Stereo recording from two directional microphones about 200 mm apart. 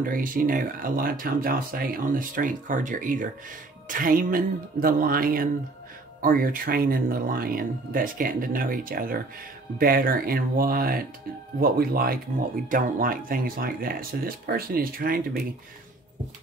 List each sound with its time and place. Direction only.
0.0 s speech: 45° right (ahead or behind)